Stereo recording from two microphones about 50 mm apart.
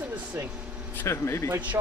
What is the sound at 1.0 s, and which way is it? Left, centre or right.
Speech, left.